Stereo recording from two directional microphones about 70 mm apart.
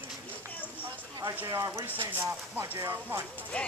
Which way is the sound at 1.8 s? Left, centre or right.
Right.